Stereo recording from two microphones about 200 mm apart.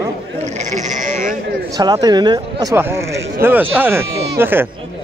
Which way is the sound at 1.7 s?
20° right (ahead or behind).